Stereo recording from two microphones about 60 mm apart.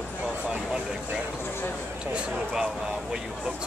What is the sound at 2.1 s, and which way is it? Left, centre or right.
Speech, centre.